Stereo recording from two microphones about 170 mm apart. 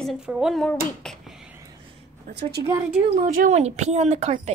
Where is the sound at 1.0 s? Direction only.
Centre (ahead or behind).